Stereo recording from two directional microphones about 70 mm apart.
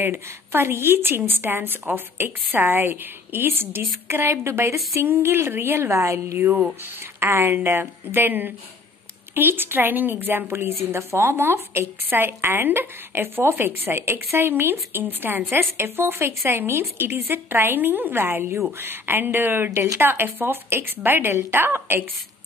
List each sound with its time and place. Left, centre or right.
0.0 s a woman's voice: right
5.0 s a woman's voice: right